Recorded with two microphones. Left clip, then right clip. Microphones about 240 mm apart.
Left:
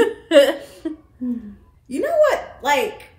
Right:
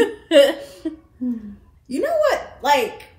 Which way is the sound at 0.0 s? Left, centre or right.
Centre.